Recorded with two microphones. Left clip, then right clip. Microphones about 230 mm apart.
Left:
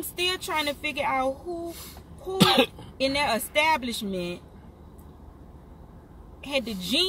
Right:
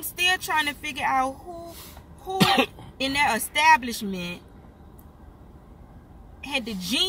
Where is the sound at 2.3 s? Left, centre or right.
Centre.